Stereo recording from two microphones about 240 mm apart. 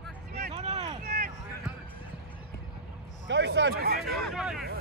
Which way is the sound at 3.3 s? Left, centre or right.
Right.